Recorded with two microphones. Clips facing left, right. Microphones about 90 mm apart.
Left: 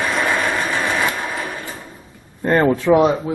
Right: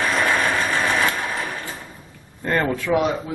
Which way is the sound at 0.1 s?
5° left (ahead or behind).